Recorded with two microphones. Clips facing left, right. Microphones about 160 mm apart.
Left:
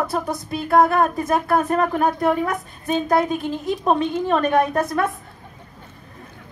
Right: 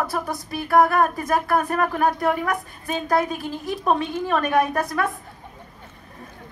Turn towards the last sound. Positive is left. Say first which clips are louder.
# left 2 dB
turn(degrees=25)  # may be behind; listen again after turning